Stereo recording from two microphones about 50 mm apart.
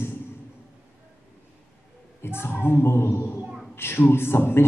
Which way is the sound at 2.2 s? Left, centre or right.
Left.